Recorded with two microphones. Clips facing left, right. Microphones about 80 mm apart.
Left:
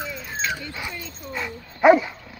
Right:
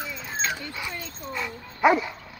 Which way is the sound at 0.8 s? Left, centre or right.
Centre.